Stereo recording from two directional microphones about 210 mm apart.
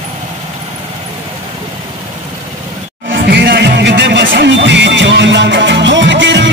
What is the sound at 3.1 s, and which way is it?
Music, 50° right (ahead or behind).